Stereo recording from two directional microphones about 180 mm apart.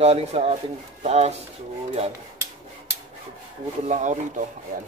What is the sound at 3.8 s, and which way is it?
Speech, 40° right (ahead or behind).